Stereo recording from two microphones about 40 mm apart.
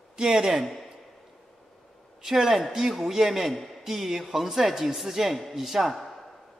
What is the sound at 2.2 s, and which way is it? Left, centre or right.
A man's voice, centre.